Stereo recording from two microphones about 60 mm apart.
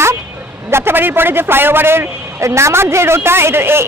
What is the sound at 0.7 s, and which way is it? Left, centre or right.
Speech, right.